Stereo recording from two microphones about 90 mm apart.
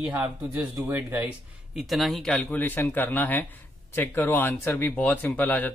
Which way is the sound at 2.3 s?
20° left (ahead or behind).